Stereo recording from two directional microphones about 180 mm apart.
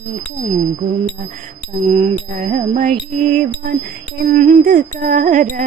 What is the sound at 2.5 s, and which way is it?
Music, 45° right (ahead or behind).